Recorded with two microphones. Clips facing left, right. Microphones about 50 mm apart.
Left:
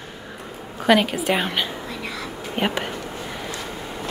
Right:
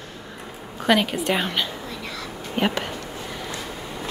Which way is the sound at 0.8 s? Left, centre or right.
Centre.